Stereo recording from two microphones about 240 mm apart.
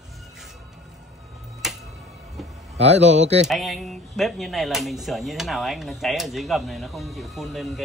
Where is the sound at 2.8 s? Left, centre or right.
Right.